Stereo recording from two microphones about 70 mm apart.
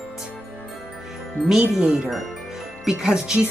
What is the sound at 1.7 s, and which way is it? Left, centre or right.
Speech, centre.